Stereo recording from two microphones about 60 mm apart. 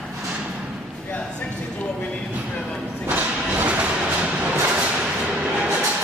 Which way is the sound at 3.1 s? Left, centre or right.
Right.